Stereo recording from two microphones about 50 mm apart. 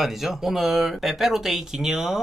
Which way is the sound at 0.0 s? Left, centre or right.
Centre.